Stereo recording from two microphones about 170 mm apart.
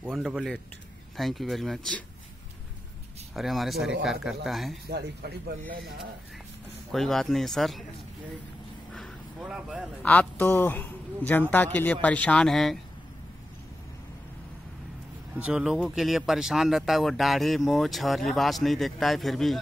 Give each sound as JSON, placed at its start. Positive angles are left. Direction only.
{"t": 0.0, "sound": "speech", "side_deg": -5}
{"t": 3.3, "sound": "speech", "side_deg": 0}
{"t": 4.8, "sound": "speech", "side_deg": -75}
{"t": 6.9, "sound": "speech", "side_deg": 0}
{"t": 8.9, "sound": "a sound", "side_deg": 0}
{"t": 10.0, "sound": "a man's voice", "side_deg": 10}
{"t": 15.3, "sound": "speech", "side_deg": -5}